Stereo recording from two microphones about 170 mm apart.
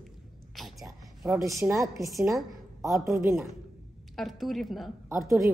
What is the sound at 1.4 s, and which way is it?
A woman's voice, 20° right (ahead or behind).